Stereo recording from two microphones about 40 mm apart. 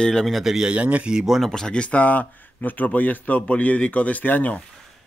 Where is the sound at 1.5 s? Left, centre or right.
Centre.